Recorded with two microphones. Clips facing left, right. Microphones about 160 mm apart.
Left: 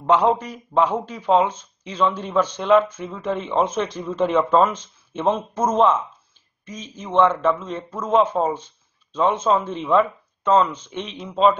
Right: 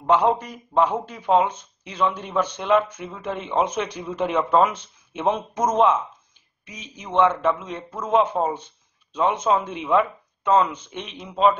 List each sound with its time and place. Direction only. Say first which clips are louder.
0.4 s speech: left 1 dB; 10° right (ahead or behind)